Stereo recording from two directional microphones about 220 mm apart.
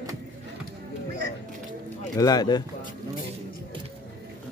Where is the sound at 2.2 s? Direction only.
15° left (ahead or behind).